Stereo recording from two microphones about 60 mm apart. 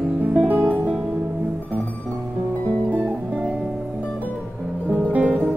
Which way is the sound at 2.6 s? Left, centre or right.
Right.